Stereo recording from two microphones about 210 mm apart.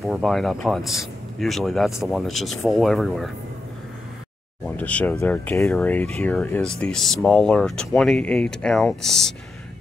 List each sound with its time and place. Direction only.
0.0 s speech: centre (ahead or behind)
4.6 s speech: 5° left (ahead or behind)